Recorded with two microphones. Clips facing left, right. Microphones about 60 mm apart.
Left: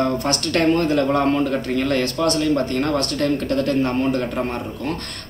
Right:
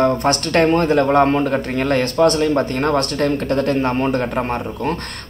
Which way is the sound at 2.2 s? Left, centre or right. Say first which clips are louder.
Right 4 dB; right.